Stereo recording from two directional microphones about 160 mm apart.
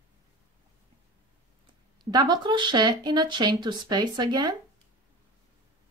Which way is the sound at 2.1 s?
25° right (ahead or behind).